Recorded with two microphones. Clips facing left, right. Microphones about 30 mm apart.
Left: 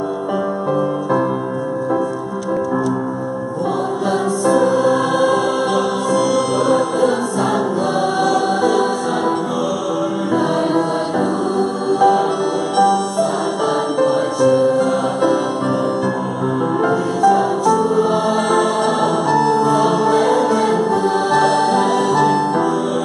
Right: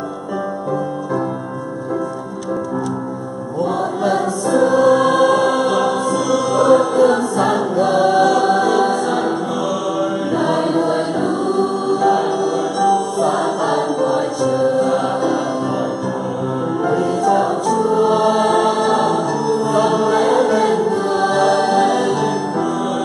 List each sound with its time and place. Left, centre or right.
4.0 s music: centre
10.3 s music: centre
14.0 s music: centre
16.9 s music: centre
19.3 s music: left
19.7 s music: centre